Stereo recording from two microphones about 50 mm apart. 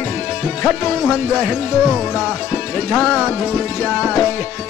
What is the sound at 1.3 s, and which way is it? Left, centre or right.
Speech, centre.